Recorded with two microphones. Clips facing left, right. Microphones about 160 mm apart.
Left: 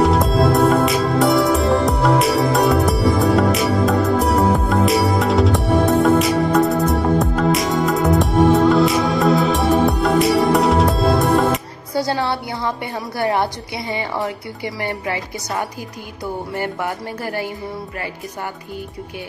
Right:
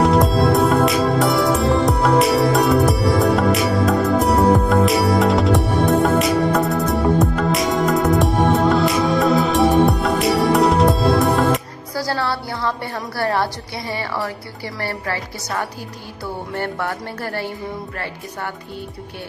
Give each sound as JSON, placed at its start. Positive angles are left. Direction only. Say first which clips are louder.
{"t": 0.0, "sound": "music", "louder": "even", "side_deg": 0}
{"t": 11.9, "sound": "a woman's voice", "louder": "left 2 dB", "side_deg": 20}